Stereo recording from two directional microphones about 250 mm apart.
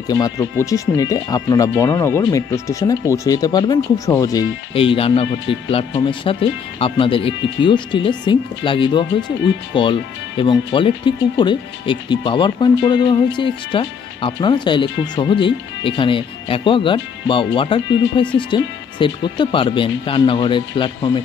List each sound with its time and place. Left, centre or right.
0.1 s speech: centre